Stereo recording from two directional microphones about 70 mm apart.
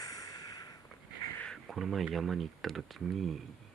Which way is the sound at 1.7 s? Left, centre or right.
Centre.